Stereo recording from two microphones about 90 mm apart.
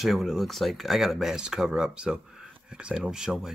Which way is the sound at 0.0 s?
Centre (ahead or behind).